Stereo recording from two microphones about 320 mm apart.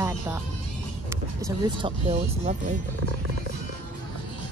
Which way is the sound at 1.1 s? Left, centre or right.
Centre.